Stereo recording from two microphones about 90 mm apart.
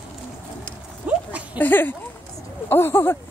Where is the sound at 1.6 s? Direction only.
20° left (ahead or behind).